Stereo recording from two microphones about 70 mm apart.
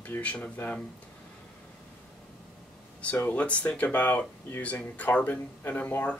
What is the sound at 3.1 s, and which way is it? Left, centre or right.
Speech, left.